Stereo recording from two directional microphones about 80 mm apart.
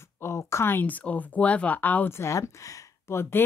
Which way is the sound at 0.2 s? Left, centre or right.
Left.